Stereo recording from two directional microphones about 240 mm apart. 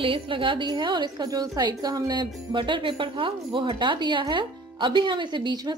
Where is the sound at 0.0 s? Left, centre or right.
Right.